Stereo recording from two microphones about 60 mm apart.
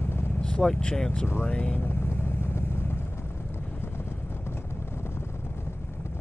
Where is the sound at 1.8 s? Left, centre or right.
Left.